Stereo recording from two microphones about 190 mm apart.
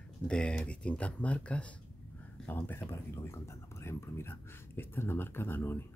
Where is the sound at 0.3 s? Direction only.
5° left (ahead or behind).